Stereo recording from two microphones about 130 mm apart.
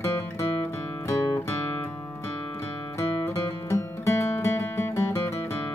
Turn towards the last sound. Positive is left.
turn(degrees=20)  # may be behind; listen again after turning